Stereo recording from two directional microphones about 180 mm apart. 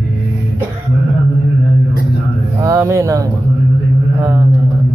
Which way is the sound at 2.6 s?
15° right (ahead or behind).